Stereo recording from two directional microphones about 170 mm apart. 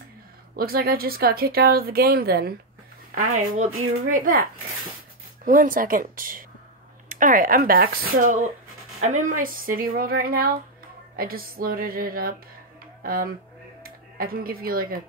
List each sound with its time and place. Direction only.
0.6 s speech: 60° right (ahead or behind)
3.2 s speech: 50° right (ahead or behind)